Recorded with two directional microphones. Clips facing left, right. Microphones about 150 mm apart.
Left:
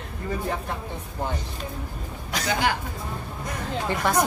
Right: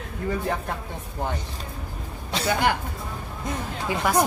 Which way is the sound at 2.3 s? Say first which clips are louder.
Right 3 dB; 30° right (ahead or behind).